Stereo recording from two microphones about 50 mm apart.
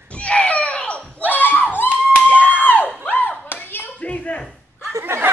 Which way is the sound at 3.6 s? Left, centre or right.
Left.